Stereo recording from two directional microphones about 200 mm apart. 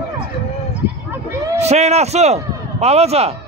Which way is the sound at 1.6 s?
35° right (ahead or behind).